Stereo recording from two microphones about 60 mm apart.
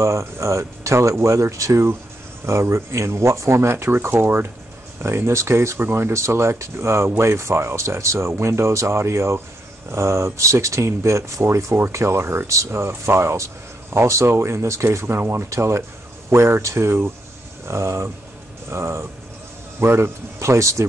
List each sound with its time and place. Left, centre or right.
0.0 s speech: right